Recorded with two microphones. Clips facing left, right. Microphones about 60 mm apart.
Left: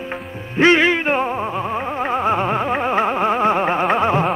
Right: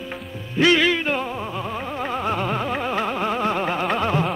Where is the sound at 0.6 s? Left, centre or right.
Left.